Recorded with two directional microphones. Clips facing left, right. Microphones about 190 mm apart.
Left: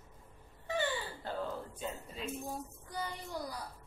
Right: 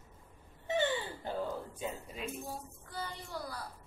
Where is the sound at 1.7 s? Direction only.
10° right (ahead or behind).